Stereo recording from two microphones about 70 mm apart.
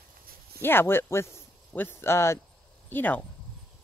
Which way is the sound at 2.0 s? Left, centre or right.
Left.